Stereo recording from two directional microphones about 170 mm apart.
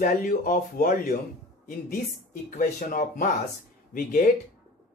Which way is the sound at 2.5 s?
55° left (ahead or behind).